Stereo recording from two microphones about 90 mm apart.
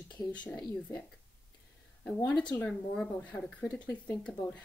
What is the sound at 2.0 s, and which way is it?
Speech, 10° left (ahead or behind).